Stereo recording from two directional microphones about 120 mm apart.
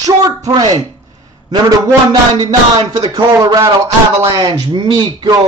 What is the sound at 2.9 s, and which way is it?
Speech, 30° right (ahead or behind).